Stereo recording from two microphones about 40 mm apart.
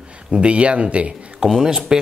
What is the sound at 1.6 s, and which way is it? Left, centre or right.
Speech, centre.